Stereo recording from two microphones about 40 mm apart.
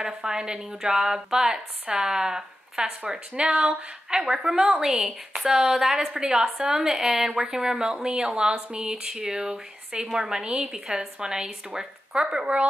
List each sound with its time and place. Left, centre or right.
0.0 s a woman's voice: centre
4.2 s a woman's voice: centre